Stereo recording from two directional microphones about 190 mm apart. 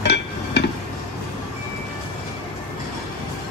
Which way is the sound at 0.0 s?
65° left (ahead or behind).